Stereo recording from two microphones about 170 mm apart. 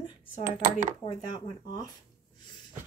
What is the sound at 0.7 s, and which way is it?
Speech, 50° right (ahead or behind).